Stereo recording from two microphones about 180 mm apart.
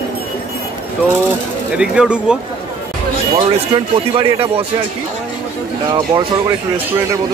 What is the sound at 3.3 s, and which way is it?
Speech, 30° right (ahead or behind).